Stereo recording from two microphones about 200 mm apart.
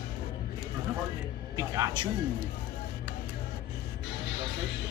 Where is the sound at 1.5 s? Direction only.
15° right (ahead or behind).